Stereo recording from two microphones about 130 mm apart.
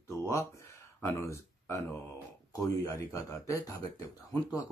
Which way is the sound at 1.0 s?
20° left (ahead or behind).